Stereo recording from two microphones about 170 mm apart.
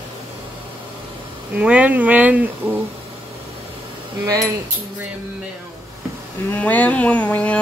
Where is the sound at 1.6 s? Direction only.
5° right (ahead or behind).